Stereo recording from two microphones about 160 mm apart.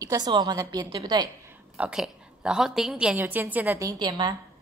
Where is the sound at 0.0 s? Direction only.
25° right (ahead or behind).